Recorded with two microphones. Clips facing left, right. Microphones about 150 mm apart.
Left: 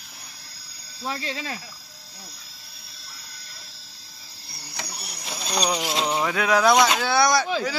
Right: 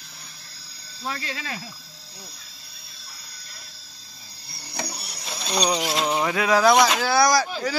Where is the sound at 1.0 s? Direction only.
25° left (ahead or behind).